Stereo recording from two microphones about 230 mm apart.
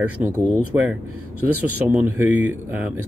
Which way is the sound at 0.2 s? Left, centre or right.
Centre.